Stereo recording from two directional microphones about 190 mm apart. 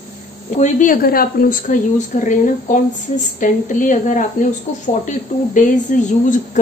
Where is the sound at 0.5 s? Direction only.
40° left (ahead or behind).